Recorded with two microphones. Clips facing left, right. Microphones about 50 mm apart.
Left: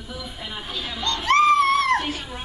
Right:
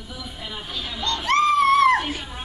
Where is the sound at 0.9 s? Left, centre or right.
Centre.